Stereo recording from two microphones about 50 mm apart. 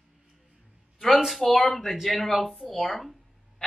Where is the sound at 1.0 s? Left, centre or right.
Centre.